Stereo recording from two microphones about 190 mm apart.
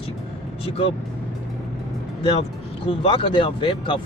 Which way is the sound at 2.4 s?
30° left (ahead or behind).